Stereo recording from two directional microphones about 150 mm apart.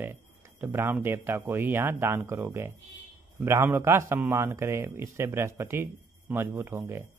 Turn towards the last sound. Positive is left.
turn(degrees=-15)  # may be behind; listen again after turning